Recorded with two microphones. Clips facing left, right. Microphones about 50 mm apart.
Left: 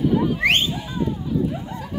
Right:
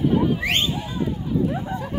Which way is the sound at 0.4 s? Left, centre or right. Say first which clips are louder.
Left 5 dB; left.